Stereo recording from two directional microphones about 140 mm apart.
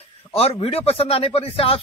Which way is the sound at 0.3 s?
45° left (ahead or behind).